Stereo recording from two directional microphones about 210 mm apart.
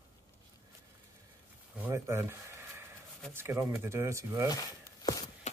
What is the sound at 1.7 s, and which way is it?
Speech, 10° right (ahead or behind).